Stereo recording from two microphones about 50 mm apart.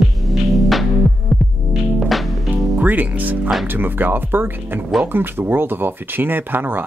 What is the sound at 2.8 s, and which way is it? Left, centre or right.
Music, right.